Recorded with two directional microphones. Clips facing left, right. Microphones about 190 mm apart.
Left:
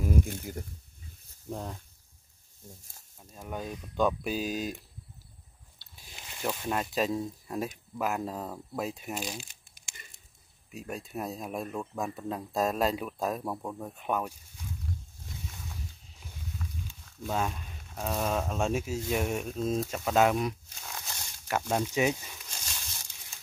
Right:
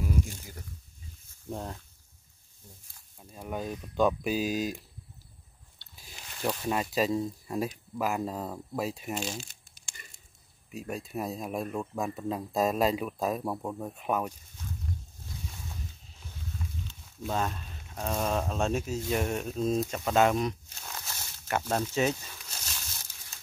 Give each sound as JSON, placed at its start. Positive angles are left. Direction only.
{"t": 0.0, "sound": "a sound", "side_deg": 55}
{"t": 1.5, "sound": "speech", "side_deg": 0}
{"t": 3.2, "sound": "speech", "side_deg": -10}
{"t": 6.1, "sound": "speech", "side_deg": 5}
{"t": 10.7, "sound": "speech", "side_deg": 0}
{"t": 17.3, "sound": "speech", "side_deg": 10}
{"t": 21.6, "sound": "speech", "side_deg": 10}
{"t": 22.6, "sound": "a sound", "side_deg": 10}